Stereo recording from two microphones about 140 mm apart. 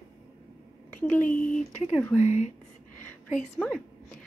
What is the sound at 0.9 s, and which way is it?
Speech, 10° left (ahead or behind).